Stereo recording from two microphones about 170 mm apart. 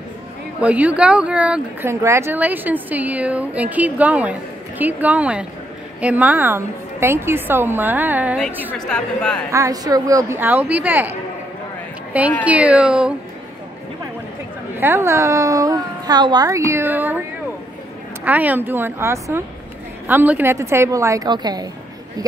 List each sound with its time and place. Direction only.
0.6 s speech: 10° right (ahead or behind)
8.7 s a woman's voice: 5° left (ahead or behind)
9.5 s speech: 20° right (ahead or behind)
14.8 s speech: 15° right (ahead or behind)
18.2 s speech: 10° right (ahead or behind)